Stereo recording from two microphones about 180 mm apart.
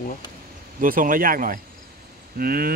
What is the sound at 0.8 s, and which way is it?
Speech, 50° right (ahead or behind).